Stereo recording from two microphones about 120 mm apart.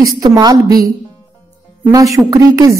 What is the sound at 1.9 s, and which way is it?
Speech, 30° right (ahead or behind).